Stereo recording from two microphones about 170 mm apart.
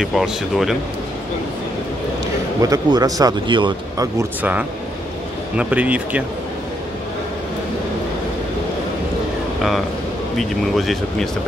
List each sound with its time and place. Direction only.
0.0 s speech: centre (ahead or behind)
2.6 s speech: 20° right (ahead or behind)
4.4 s speech: 10° right (ahead or behind)
10.3 s speech: centre (ahead or behind)